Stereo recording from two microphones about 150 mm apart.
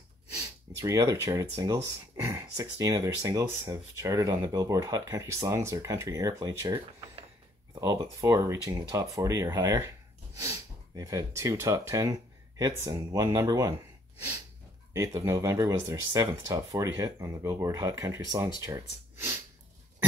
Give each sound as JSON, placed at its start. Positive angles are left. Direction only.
{"t": 0.3, "sound": "snort", "side_deg": -20}
{"t": 1.6, "sound": "speech", "side_deg": -25}
{"t": 14.9, "sound": "speech", "side_deg": -20}